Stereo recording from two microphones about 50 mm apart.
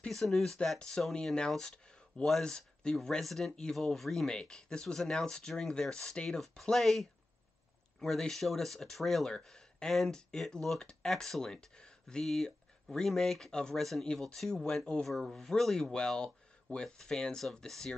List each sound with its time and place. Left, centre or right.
0.1 s speech: centre
1.6 s a sound: centre
2.4 s speech: centre
4.3 s speech: centre
9.3 s speech: centre